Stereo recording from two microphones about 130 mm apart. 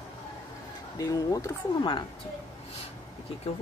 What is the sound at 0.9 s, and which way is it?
Speech, 30° left (ahead or behind).